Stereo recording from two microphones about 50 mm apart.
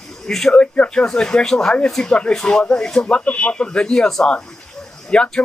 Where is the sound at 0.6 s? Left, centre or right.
Left.